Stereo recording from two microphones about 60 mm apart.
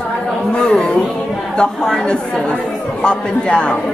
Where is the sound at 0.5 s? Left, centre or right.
Centre.